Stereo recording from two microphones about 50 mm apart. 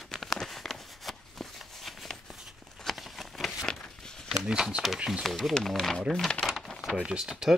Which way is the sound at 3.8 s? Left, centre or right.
Centre.